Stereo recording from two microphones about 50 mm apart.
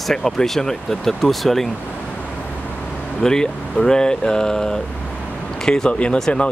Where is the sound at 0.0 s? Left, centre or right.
Centre.